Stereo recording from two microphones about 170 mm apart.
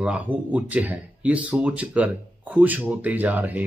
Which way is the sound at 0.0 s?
10° right (ahead or behind).